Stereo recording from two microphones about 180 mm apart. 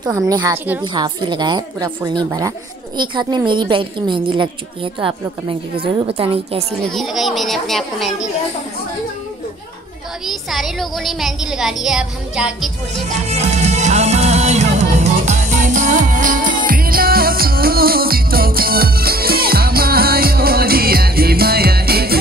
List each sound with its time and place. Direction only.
0.3 s a woman's voice: 20° right (ahead or behind)
6.0 s a woman's voice: 30° right (ahead or behind)
6.9 s a woman's voice: centre (ahead or behind)
10.2 s a woman's voice: centre (ahead or behind)
12.9 s music: 40° right (ahead or behind); by 22.2 s 60° right (ahead or behind)